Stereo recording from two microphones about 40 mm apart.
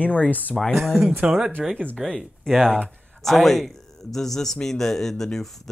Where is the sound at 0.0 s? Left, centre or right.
Left.